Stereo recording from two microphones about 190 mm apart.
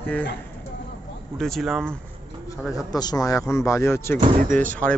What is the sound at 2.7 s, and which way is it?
A man's voice, 20° left (ahead or behind).